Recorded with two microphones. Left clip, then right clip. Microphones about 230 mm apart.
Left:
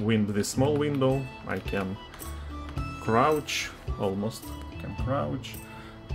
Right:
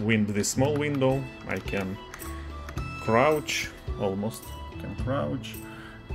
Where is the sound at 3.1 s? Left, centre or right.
Centre.